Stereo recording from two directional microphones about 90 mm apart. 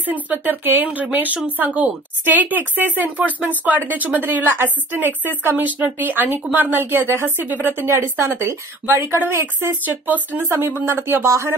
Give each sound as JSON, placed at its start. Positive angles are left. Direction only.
{"t": 0.0, "sound": "speech", "side_deg": -20}